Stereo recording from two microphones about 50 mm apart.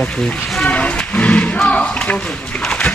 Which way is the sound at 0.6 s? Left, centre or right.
Left.